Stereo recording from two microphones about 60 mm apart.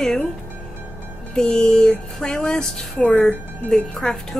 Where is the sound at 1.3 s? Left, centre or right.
Centre.